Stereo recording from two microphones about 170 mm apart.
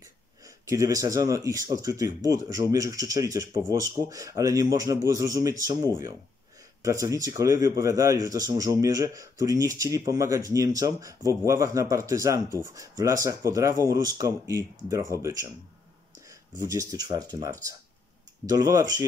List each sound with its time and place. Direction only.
0.7 s a man's voice: 20° right (ahead or behind)
16.6 s a man's voice: 20° right (ahead or behind)